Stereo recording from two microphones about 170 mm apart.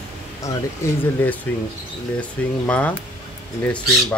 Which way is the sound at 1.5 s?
10° left (ahead or behind).